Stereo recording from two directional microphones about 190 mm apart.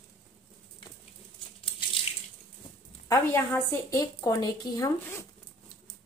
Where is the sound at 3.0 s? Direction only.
15° left (ahead or behind).